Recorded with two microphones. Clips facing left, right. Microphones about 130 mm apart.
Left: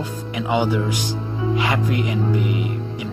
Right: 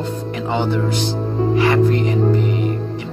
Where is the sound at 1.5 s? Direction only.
15° left (ahead or behind).